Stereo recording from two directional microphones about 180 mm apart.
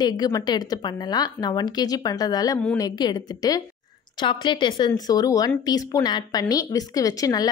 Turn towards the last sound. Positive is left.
turn(degrees=20)  # may be behind; listen again after turning